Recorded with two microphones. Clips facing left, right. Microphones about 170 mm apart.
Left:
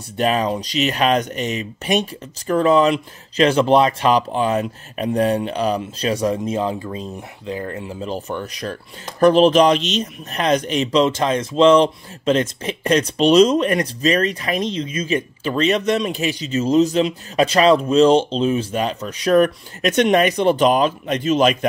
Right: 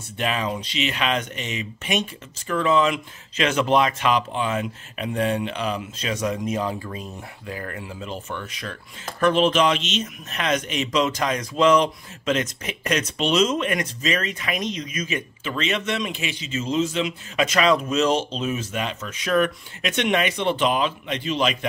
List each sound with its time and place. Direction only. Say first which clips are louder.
0.2 s speech: left 7 dB; 40° left (ahead or behind)